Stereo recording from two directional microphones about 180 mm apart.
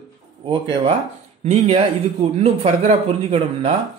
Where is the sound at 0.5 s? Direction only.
25° right (ahead or behind).